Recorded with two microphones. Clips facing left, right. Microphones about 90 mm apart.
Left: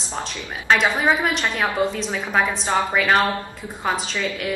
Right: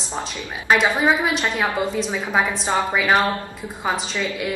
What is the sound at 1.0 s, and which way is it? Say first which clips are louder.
A woman's voice: right 1 dB; 5° right (ahead or behind).